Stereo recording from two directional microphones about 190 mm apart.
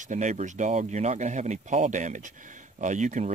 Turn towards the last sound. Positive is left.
turn(degrees=-40)  # may be behind; listen again after turning